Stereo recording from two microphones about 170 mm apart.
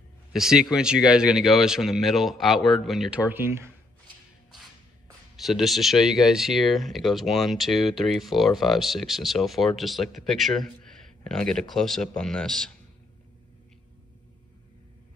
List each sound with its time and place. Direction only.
0.3 s speech: 5° right (ahead or behind)
3.3 s speech: 15° right (ahead or behind)
5.4 s speech: centre (ahead or behind)